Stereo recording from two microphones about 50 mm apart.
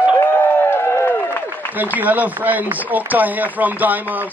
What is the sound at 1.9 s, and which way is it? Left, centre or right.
Speech, right.